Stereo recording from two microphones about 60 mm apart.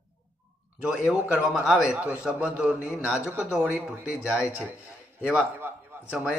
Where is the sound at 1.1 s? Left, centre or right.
Centre.